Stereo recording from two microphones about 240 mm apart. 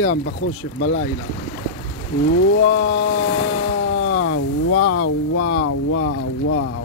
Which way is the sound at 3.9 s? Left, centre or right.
Left.